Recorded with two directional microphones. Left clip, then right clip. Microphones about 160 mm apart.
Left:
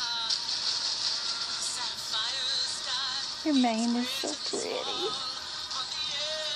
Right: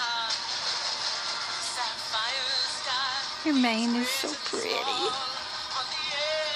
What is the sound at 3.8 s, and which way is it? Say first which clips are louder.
Speech: right 2 dB; 40° right (ahead or behind).